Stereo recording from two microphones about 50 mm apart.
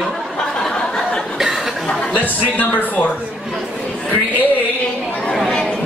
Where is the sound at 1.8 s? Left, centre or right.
Centre.